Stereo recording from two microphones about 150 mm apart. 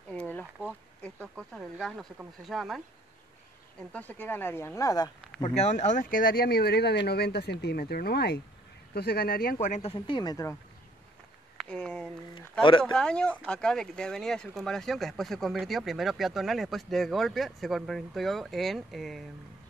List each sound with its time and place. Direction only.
0.1 s a sound: 10° left (ahead or behind)
1.0 s speech: 5° left (ahead or behind)
3.9 s speech: 10° left (ahead or behind)
5.6 s speech: 50° left (ahead or behind); by 9.6 s 80° left
9.6 s speech: 45° left (ahead or behind); by 10.6 s 20° left (ahead or behind)
11.5 s speech: 5° left (ahead or behind)